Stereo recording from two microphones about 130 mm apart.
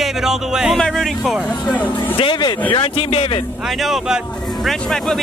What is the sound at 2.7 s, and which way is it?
Speech, 45° left (ahead or behind).